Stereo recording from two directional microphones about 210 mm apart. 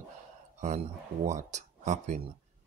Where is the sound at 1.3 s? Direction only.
35° right (ahead or behind).